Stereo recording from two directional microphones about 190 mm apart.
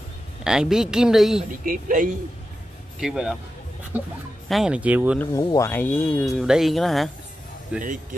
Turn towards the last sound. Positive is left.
turn(degrees=-5)  # may be behind; listen again after turning